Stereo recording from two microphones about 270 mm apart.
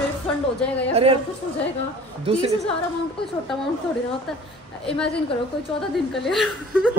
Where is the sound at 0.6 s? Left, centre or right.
Centre.